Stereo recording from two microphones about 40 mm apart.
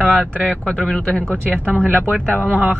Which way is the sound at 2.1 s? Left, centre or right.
Left.